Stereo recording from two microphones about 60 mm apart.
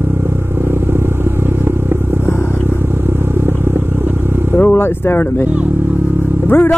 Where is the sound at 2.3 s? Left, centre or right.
Left.